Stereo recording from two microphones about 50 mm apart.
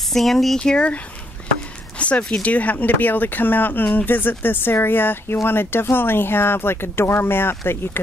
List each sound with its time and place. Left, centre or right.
0.1 s speech: centre
0.6 s speech: left
2.0 s a sound: left
2.4 s speech: left